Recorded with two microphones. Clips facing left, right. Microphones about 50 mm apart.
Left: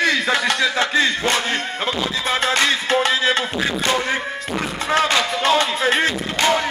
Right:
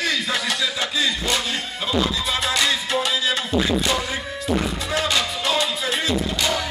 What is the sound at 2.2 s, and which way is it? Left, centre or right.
Music, left.